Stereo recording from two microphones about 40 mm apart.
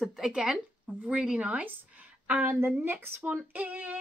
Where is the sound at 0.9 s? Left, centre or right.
Right.